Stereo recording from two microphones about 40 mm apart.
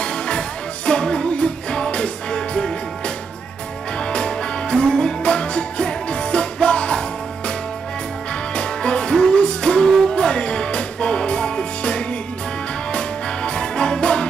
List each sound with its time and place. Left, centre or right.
0.0 s music: left
4.0 s music: left
8.5 s music: left